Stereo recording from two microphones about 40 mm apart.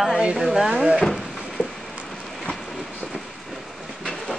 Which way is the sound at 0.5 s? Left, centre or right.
Centre.